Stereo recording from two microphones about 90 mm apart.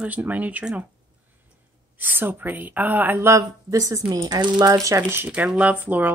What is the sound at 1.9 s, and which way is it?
Speech, 20° right (ahead or behind).